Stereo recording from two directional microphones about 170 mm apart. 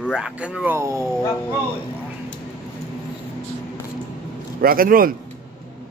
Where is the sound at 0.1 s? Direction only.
5° right (ahead or behind).